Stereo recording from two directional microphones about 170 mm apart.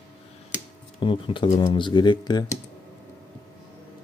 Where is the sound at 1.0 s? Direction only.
30° left (ahead or behind).